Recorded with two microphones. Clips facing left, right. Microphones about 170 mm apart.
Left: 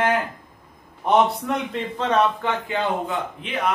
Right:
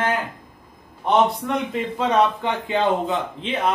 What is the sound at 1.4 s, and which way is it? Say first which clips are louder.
Speech: right 1 dB; centre (ahead or behind).